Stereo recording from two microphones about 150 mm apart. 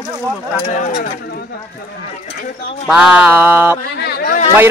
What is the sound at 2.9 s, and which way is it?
Speech, 5° right (ahead or behind).